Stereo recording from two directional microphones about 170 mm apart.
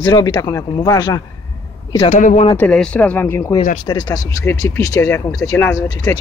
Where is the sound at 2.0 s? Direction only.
50° left (ahead or behind).